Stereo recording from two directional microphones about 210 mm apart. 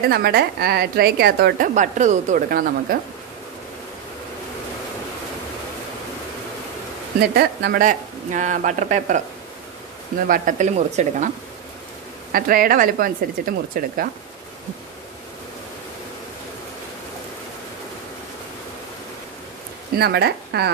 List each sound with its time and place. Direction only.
0.1 s a woman's voice: 50° right (ahead or behind)
7.2 s speech: 50° right (ahead or behind)
10.2 s speech: 40° right (ahead or behind)
12.3 s a woman's voice: 45° right (ahead or behind)
20.0 s a woman's voice: 50° right (ahead or behind)